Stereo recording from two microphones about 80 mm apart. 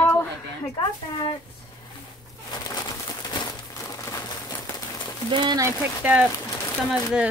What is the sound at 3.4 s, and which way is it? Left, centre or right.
Crumpling, left.